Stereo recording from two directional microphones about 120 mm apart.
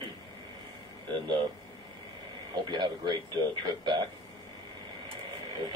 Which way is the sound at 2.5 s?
40° right (ahead or behind).